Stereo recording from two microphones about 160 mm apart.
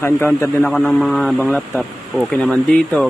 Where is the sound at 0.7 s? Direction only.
Centre (ahead or behind).